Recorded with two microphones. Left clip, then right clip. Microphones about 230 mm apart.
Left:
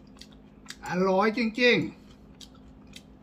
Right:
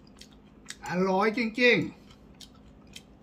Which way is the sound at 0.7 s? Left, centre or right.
Centre.